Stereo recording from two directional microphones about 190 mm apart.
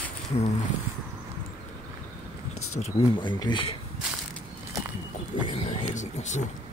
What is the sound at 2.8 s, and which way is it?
Speech, 30° left (ahead or behind).